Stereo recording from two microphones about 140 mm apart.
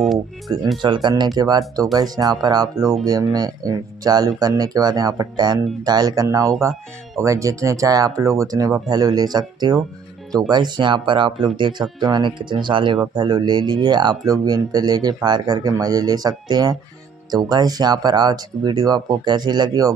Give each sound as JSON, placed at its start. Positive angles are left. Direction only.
{"t": 0.5, "sound": "speech", "side_deg": -30}